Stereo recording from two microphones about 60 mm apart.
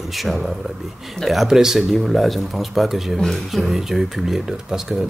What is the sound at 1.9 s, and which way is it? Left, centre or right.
Speech, centre.